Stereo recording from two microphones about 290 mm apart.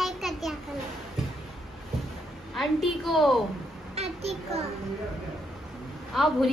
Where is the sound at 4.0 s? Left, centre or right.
Right.